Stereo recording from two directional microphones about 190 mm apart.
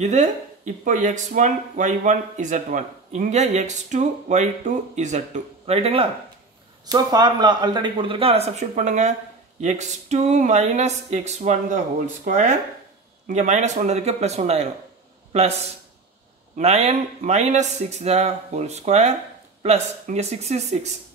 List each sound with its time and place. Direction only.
0.0 s speech: 40° right (ahead or behind)
6.9 s speech: 20° right (ahead or behind); by 11.8 s 35° right (ahead or behind)
13.3 s speech: 40° right (ahead or behind)
16.5 s speech: 35° right (ahead or behind)